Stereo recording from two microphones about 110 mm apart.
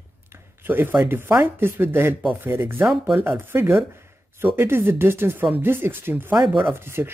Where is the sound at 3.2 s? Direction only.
20° right (ahead or behind).